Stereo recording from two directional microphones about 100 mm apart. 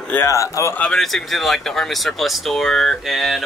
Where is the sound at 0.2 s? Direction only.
30° left (ahead or behind).